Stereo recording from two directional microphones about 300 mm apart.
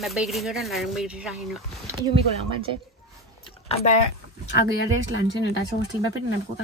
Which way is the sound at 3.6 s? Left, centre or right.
Centre.